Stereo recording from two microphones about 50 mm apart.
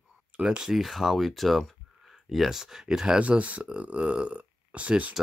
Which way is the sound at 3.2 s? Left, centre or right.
Right.